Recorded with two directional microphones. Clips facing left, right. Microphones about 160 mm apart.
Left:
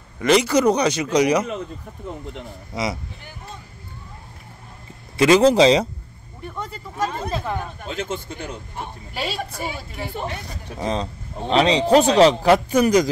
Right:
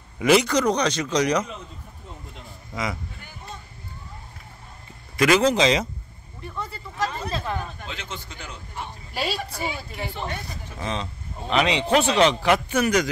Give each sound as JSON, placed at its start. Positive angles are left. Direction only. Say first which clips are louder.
{"t": 0.2, "sound": "speech", "louder": "left 1 dB", "side_deg": -5}
{"t": 0.5, "sound": "speech", "louder": "left 4 dB", "side_deg": 10}
{"t": 2.7, "sound": "speech", "louder": "left 4 dB", "side_deg": 20}
{"t": 5.1, "sound": "a man's voice", "louder": "left 5 dB", "side_deg": 30}
{"t": 7.3, "sound": "speech", "louder": "left 3 dB", "side_deg": 15}
{"t": 7.8, "sound": "speech", "louder": "left 8 dB", "side_deg": 45}
{"t": 9.1, "sound": "a woman's voice", "louder": "right 1 dB", "side_deg": 0}
{"t": 10.8, "sound": "a man's voice", "louder": "left 5 dB", "side_deg": 35}